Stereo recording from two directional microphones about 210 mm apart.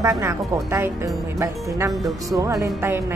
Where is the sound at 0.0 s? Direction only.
15° right (ahead or behind).